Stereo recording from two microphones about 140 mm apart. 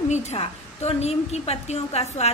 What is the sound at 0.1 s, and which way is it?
A woman's voice, 50° left (ahead or behind).